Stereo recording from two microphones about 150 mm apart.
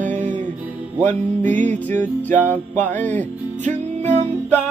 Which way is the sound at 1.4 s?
55° right (ahead or behind).